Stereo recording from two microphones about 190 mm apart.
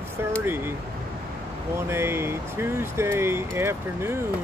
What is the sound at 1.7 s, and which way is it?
Speech, 15° right (ahead or behind).